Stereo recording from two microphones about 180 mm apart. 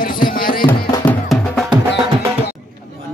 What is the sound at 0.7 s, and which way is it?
Music, 20° left (ahead or behind).